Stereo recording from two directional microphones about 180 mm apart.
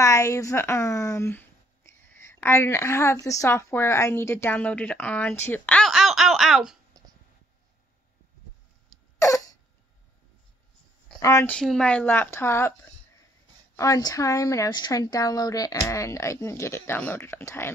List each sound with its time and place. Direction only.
0.0 s a woman's voice: 15° left (ahead or behind); by 6.8 s centre (ahead or behind)
11.1 s a woman's voice: 15° left (ahead or behind)
11.5 s a woman's voice: 5° left (ahead or behind)
13.7 s a woman's voice: 20° left (ahead or behind)